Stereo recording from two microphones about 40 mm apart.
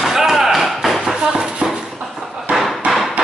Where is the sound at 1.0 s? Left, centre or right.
Centre.